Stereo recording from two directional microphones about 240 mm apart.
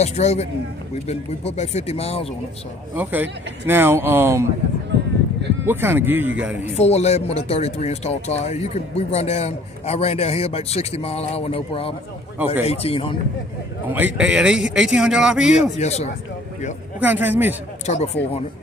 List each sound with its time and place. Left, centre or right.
0.0 s speech: left
3.0 s speech: centre
5.7 s speech: centre
6.8 s speech: left
13.8 s a man's voice: centre
15.5 s speech: left
17.0 s speech: centre
17.8 s speech: left